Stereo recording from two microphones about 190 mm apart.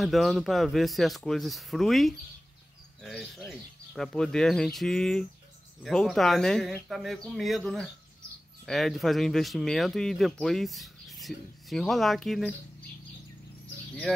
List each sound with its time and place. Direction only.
0.0 s speech: centre (ahead or behind)
14.1 s speech: 5° left (ahead or behind)